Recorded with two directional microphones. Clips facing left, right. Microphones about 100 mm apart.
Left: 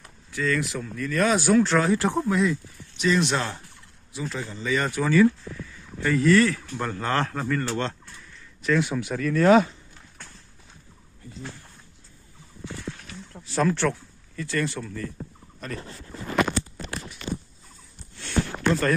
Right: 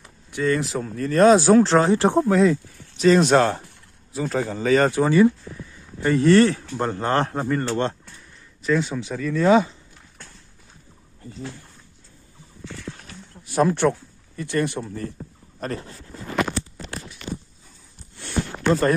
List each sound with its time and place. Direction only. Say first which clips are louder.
0.3 s speech: right 4 dB; 25° right (ahead or behind)
0.7 s speech: right 7 dB; 35° right (ahead or behind)
5.1 s speech: right 2 dB; 25° right (ahead or behind)
8.6 s speech: right 1 dB; centre (ahead or behind)
9.4 s speech: even; 20° right (ahead or behind)
13.6 s speech: right 4 dB; 20° right (ahead or behind)
14.9 s speech: right 3 dB; 30° right (ahead or behind)
18.7 s speech: right 5 dB; 30° right (ahead or behind)